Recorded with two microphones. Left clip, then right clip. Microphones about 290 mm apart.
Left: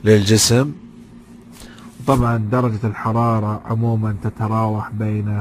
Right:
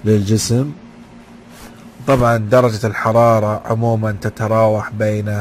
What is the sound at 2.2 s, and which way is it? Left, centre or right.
Speech, right.